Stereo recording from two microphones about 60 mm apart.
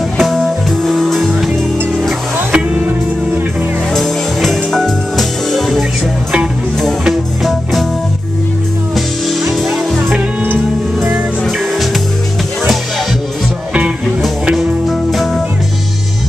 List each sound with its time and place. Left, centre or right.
0.2 s music: centre
2.5 s music: centre
3.9 s music: centre
7.1 s music: centre
10.1 s music: right
14.4 s music: centre
14.9 s music: centre